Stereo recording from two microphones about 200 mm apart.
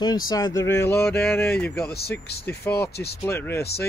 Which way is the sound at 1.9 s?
55° left (ahead or behind).